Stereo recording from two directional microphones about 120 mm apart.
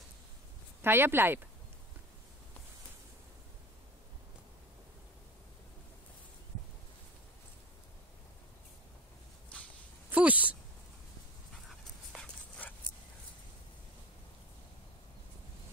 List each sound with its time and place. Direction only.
0.8 s a woman's voice: 20° right (ahead or behind)
10.1 s a sound: 15° right (ahead or behind)
12.2 s dog: 10° left (ahead or behind)